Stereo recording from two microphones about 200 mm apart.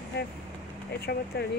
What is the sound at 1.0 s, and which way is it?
Speech, 50° left (ahead or behind).